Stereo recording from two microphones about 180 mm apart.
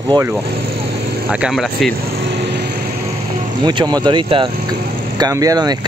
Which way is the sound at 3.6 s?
25° right (ahead or behind).